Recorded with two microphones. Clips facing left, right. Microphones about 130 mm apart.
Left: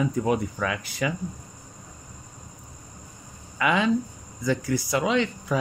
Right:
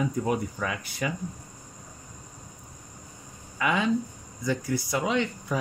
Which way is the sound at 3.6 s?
90° left.